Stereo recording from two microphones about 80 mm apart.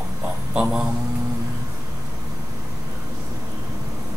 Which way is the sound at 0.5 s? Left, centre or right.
Centre.